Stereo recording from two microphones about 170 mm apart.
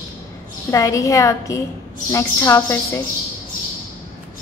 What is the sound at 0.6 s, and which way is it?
A woman's voice, 20° left (ahead or behind).